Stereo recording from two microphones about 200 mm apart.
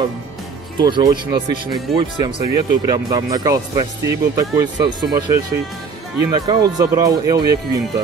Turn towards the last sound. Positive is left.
turn(degrees=-20)  # may be behind; listen again after turning